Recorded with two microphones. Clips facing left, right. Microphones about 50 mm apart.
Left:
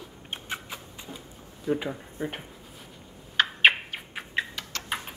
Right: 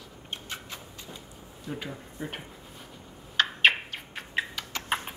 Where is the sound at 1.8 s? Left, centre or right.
Centre.